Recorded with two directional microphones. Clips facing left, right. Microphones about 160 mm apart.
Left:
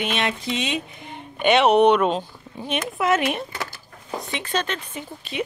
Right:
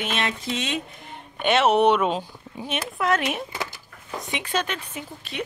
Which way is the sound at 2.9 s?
5° left (ahead or behind).